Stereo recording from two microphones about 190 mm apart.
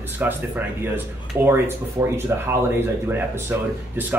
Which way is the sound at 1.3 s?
10° right (ahead or behind).